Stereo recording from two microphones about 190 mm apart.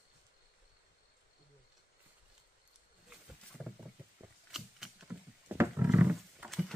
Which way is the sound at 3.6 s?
Centre (ahead or behind).